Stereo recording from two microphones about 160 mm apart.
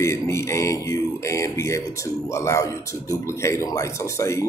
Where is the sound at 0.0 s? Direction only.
15° left (ahead or behind).